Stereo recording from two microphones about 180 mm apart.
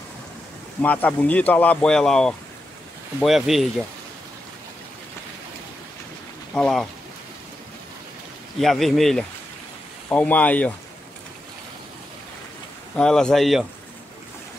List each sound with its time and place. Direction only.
0.8 s speech: 10° left (ahead or behind)
6.5 s speech: 5° left (ahead or behind)
8.5 s speech: centre (ahead or behind)
12.9 s speech: 5° left (ahead or behind)